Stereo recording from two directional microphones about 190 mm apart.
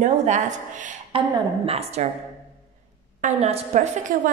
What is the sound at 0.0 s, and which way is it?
Speech, 40° right (ahead or behind).